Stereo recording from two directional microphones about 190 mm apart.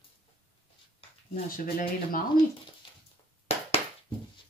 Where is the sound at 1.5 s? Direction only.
50° left (ahead or behind).